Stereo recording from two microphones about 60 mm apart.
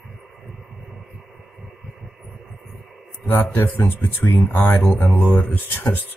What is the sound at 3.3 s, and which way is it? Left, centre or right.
Speech, left.